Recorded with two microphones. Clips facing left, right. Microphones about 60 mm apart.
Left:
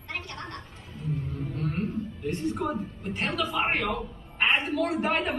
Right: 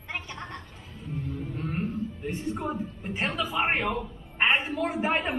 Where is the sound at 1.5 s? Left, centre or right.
Right.